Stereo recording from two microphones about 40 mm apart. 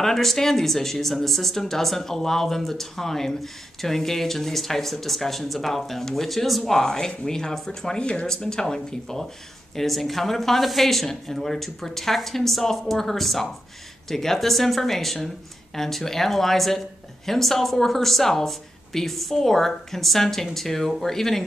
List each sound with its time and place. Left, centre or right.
0.0 s speech: centre
8.0 s speech: left
8.3 s speech: centre
9.8 s speech: centre